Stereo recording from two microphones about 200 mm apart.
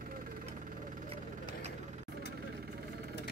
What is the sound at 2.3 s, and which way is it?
Vehicle, 50° right (ahead or behind).